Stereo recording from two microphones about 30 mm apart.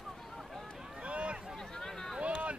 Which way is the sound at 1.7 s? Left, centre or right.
Centre.